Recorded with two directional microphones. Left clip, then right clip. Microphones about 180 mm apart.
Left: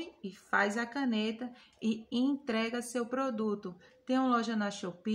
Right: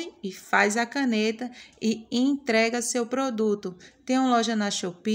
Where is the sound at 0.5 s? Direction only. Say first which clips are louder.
Right 8 dB; 30° right (ahead or behind).